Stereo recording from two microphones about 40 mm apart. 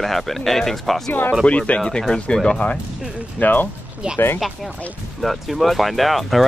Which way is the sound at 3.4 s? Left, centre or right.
Left.